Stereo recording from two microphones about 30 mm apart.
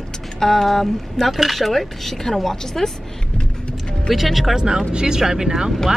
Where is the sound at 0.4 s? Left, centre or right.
Centre.